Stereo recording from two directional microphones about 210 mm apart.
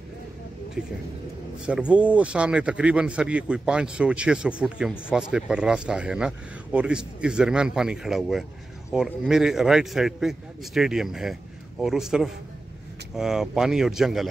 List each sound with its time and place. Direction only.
1.7 s speech: 5° right (ahead or behind)